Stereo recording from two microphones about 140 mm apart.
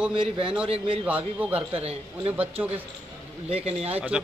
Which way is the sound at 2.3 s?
10° right (ahead or behind).